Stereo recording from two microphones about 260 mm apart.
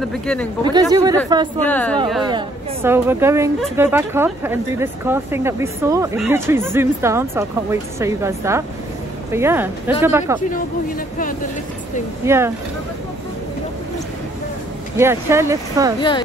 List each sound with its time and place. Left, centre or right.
0.0 s speech: centre
0.7 s speech: centre
1.7 s speech: centre
2.2 s speech: centre
12.3 s speech: centre
15.0 s speech: centre
16.0 s speech: centre